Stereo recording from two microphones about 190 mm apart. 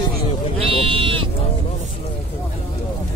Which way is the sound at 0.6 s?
30° right (ahead or behind).